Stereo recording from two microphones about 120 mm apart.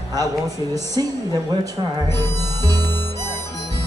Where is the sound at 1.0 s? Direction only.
35° right (ahead or behind).